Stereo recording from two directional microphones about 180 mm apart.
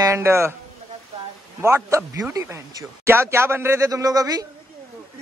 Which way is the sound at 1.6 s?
15° right (ahead or behind).